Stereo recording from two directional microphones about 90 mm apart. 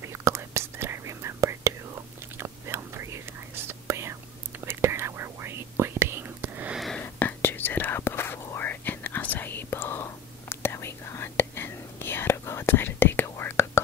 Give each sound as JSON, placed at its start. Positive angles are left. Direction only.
{"t": 0.0, "sound": "whispering", "side_deg": -30}
{"t": 6.7, "sound": "a sound", "side_deg": 0}
{"t": 7.0, "sound": "whispering", "side_deg": 20}